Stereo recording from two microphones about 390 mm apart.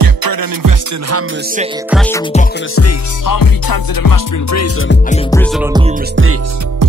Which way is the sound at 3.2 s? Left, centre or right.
Left.